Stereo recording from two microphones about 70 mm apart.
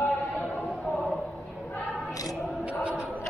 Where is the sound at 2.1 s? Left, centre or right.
Left.